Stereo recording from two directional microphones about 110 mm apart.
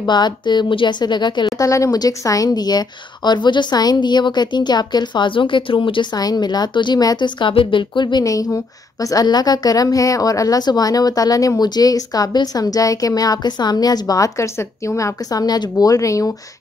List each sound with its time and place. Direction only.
0.0 s a woman's voice: 40° left (ahead or behind)
1.6 s a woman's voice: 30° left (ahead or behind)